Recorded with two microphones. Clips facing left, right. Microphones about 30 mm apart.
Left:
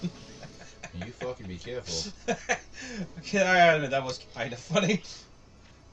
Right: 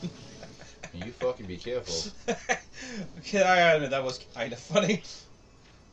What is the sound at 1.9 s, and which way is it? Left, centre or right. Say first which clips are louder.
Speech: even; centre.